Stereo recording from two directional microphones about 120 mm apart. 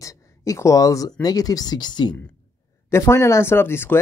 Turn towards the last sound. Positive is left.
turn(degrees=20)  # may be behind; listen again after turning